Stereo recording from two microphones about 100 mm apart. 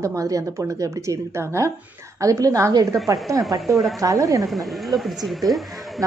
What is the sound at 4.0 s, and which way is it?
Speech, 35° right (ahead or behind).